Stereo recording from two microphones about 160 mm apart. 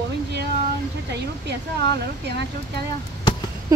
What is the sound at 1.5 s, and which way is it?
Speech, 90° right.